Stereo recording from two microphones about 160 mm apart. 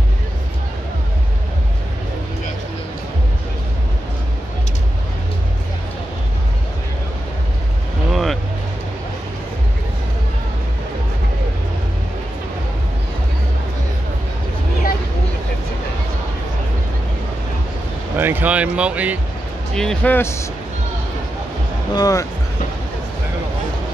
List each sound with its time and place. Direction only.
8.1 s vehicle: centre (ahead or behind)
18.1 s speech: 10° right (ahead or behind)
19.7 s speech: 5° left (ahead or behind)
21.9 s speech: 20° left (ahead or behind)